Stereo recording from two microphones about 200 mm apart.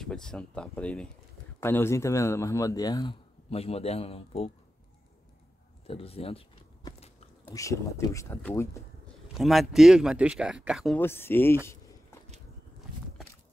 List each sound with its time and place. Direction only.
0.0 s speech: 5° left (ahead or behind); by 4.5 s 30° left (ahead or behind)
5.9 s speech: 30° left (ahead or behind)
7.4 s speech: 15° left (ahead or behind)
9.3 s speech: centre (ahead or behind)
11.0 s speech: 10° left (ahead or behind)